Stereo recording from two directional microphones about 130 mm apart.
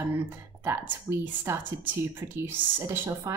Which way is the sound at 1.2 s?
15° right (ahead or behind).